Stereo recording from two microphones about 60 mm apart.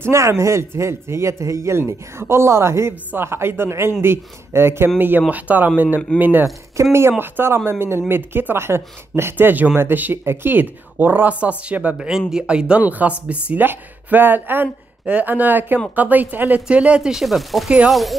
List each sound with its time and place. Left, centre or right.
0.0 s a man's voice: right
6.8 s speech: right; by 12.8 s centre
12.8 s speech: right
17.0 s speech: centre
17.6 s speech: centre